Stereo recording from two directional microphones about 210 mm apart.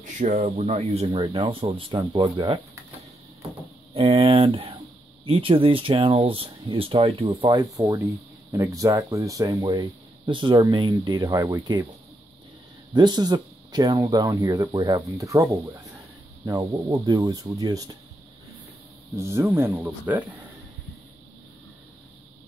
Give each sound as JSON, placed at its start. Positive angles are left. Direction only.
{"t": 0.0, "sound": "speech", "side_deg": -40}
{"t": 3.9, "sound": "speech", "side_deg": -25}
{"t": 12.9, "sound": "speech", "side_deg": -20}
{"t": 19.1, "sound": "speech", "side_deg": -10}